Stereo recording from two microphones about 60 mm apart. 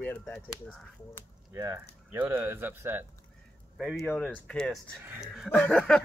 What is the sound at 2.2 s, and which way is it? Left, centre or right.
Speech, right.